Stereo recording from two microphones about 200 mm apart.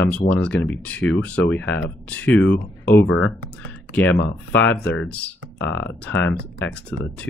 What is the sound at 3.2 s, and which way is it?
Speech, 5° left (ahead or behind).